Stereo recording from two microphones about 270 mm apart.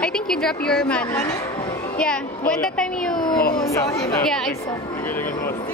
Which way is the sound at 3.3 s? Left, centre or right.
Left.